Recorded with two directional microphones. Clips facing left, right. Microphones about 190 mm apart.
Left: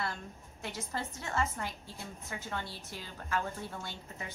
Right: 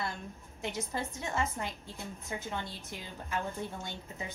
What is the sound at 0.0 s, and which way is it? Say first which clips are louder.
A woman's voice: even; 20° right (ahead or behind).